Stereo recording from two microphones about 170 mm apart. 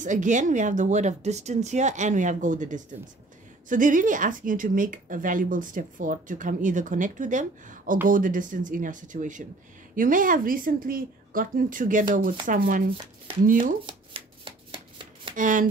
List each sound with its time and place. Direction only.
0.0 s speech: 45° right (ahead or behind)
13.8 s shuffling cards: 30° right (ahead or behind)
15.3 s speech: 50° right (ahead or behind)